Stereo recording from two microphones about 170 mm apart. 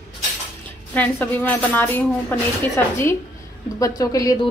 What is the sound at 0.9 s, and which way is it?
A woman's voice, 10° left (ahead or behind).